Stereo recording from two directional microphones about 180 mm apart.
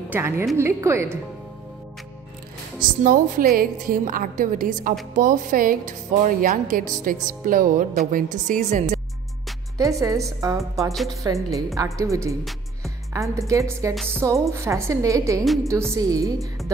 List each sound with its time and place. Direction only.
0.1 s a woman's voice: 15° right (ahead or behind)
2.8 s a woman's voice: 50° right (ahead or behind)
9.8 s a woman's voice: 20° right (ahead or behind)
15.4 s a woman's voice: centre (ahead or behind)
15.7 s a woman's voice: 15° right (ahead or behind)